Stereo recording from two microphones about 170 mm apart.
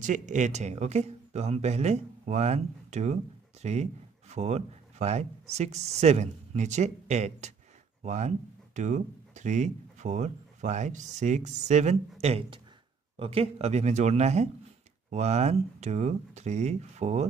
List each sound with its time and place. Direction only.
0.0 s speech: 50° right (ahead or behind)